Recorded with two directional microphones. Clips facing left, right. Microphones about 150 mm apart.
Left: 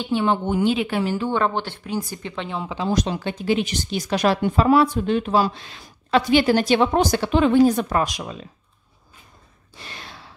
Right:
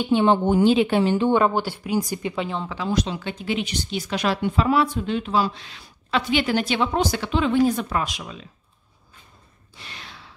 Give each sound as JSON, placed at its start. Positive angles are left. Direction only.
{"t": 0.0, "sound": "a woman's voice", "side_deg": -25}
{"t": 1.4, "sound": "speech", "side_deg": -10}
{"t": 2.9, "sound": "speech", "side_deg": 45}
{"t": 9.8, "sound": "gasp", "side_deg": 40}